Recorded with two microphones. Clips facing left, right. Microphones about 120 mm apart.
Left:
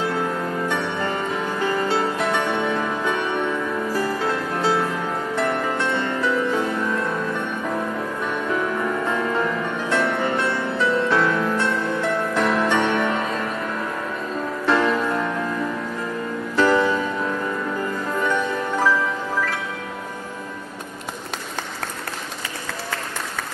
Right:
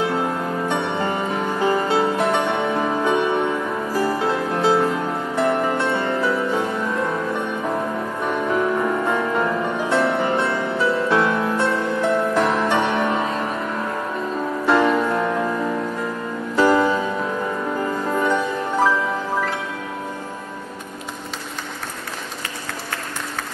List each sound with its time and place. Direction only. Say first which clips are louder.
0.0 s music: right 2 dB; 15° right (ahead or behind)
8.5 s music: right 4 dB; 10° right (ahead or behind)
14.7 s music: right 2 dB; 15° right (ahead or behind)
16.5 s music: right 2 dB; 15° right (ahead or behind)
18.1 s music: right 1 dB; 15° right (ahead or behind)